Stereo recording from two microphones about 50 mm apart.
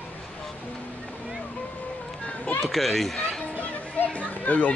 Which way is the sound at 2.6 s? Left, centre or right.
Centre.